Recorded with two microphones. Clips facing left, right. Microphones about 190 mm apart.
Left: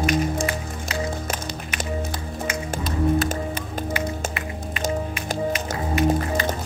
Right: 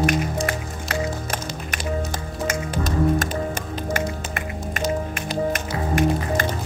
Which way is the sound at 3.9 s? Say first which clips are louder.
Right 1 dB; 45° right (ahead or behind).